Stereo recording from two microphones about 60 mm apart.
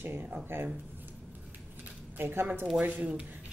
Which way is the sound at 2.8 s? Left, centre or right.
Right.